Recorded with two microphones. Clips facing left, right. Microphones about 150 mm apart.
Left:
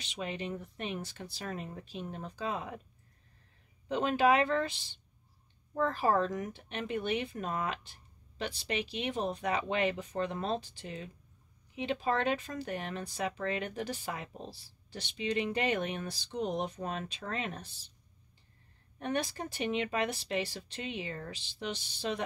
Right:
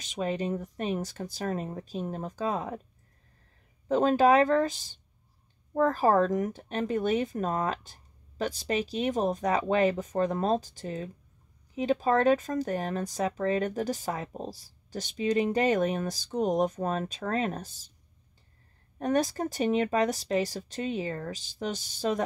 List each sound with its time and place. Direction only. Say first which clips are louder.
0.0 s speech: right 8 dB; 40° right (ahead or behind)
3.9 s speech: right 6 dB; 40° right (ahead or behind)
18.9 s speech: right 7 dB; 40° right (ahead or behind)